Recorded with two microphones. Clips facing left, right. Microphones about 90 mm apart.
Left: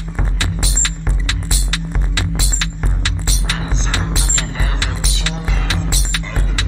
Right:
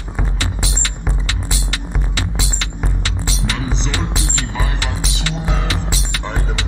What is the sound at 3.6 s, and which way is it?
Music, 30° left (ahead or behind).